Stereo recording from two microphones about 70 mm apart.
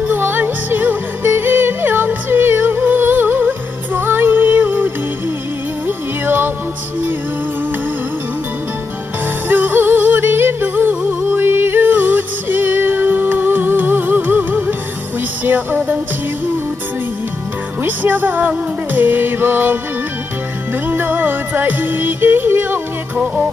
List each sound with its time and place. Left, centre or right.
0.0 s music: right
9.5 s music: right
17.8 s music: right
20.9 s music: right